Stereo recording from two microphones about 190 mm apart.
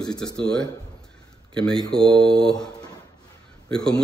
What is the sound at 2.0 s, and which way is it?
Mantra, 25° right (ahead or behind).